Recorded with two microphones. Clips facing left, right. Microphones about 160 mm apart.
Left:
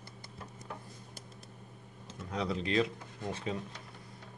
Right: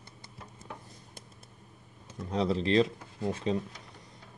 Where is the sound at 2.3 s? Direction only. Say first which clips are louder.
Right 6 dB; 30° right (ahead or behind).